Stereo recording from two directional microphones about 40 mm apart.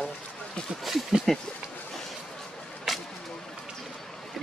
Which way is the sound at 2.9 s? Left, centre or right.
Centre.